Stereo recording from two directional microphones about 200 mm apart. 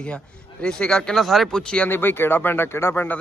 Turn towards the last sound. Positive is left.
turn(degrees=10)  # may be behind; listen again after turning